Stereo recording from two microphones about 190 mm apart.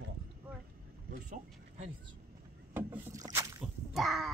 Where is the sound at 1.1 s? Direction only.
40° right (ahead or behind).